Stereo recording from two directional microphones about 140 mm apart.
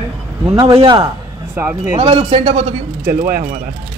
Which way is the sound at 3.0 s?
85° right.